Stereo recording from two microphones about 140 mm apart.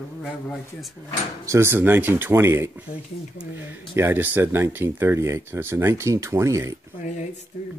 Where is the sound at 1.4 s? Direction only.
20° right (ahead or behind).